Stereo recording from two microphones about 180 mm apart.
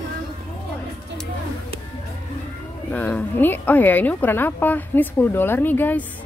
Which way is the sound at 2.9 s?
10° left (ahead or behind).